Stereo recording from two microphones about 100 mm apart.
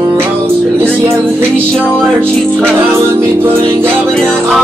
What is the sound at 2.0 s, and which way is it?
Music, 20° right (ahead or behind).